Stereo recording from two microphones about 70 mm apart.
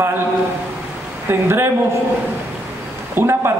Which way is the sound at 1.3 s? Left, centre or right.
Right.